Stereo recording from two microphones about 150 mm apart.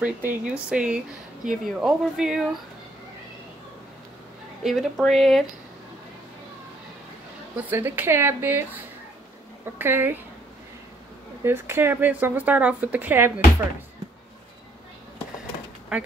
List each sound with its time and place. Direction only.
0.0 s speech: 10° right (ahead or behind)
4.6 s speech: centre (ahead or behind)
7.5 s a woman's voice: 15° right (ahead or behind)
11.4 s a woman's voice: 15° right (ahead or behind)